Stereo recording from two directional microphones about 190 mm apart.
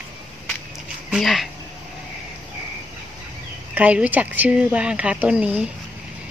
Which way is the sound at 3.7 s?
10° right (ahead or behind).